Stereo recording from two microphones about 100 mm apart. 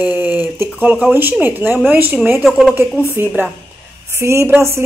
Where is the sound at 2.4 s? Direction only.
Centre (ahead or behind).